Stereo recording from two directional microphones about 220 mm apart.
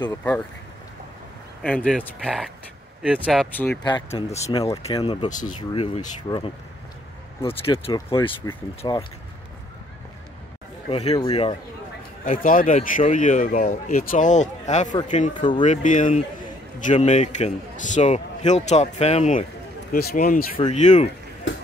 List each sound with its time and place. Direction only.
0.0 s speech: 10° left (ahead or behind)
1.6 s speech: 5° left (ahead or behind)
3.5 s speech: 10° left (ahead or behind)
3.8 s speech: 25° left (ahead or behind)
10.9 s speech: 25° left (ahead or behind)
12.3 s speech: 40° left (ahead or behind)
15.3 s speech: 20° left (ahead or behind)
15.6 s speech: 35° left (ahead or behind)
19.9 s speech: 45° left (ahead or behind)
20.5 s speech: 30° left (ahead or behind)